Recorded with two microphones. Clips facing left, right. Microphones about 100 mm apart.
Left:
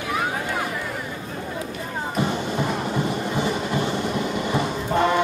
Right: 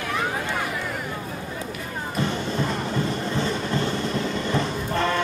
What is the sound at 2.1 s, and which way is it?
Music, 15° left (ahead or behind).